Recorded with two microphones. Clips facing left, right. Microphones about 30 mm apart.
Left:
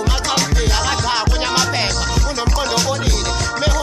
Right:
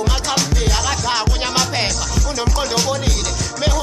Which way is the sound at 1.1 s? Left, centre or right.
Centre.